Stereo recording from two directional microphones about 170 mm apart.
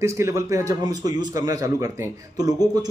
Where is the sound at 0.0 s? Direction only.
20° right (ahead or behind).